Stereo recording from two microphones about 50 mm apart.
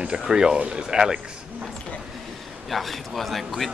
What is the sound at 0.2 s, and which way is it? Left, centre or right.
Speech, centre.